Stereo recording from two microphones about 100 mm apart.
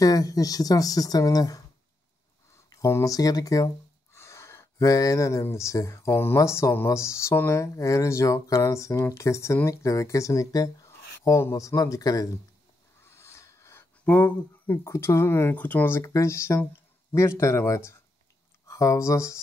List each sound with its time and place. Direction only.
0.0 s speech: 35° left (ahead or behind)
2.7 s speech: 30° left (ahead or behind)
13.0 s a sound: 25° left (ahead or behind)
14.0 s speech: 15° left (ahead or behind)
14.8 s speech: 30° left (ahead or behind)
16.0 s speech: 30° left (ahead or behind)